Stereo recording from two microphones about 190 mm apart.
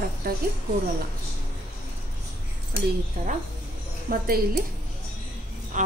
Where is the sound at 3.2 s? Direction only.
50° right (ahead or behind).